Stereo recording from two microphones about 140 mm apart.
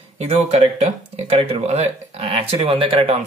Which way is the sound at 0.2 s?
50° right (ahead or behind).